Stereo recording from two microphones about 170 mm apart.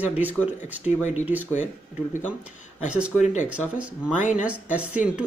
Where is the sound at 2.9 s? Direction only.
5° right (ahead or behind).